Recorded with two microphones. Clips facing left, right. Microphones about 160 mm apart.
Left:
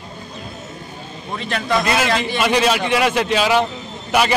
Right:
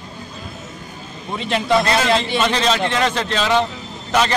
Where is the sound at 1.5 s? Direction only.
25° right (ahead or behind).